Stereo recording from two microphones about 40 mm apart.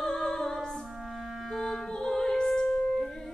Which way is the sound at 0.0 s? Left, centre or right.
Centre.